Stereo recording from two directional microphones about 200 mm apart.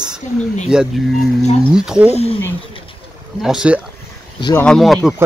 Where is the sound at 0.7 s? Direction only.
5° right (ahead or behind).